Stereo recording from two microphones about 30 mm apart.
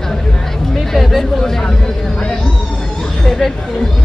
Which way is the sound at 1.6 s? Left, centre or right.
Left.